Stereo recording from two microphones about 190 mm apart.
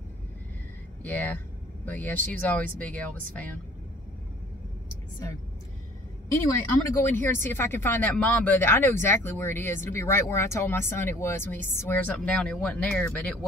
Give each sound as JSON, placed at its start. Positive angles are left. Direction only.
{"t": 1.0, "sound": "speech", "side_deg": 10}
{"t": 7.0, "sound": "speech", "side_deg": 10}